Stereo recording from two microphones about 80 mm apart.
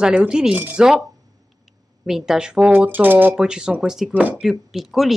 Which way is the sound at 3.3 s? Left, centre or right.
Centre.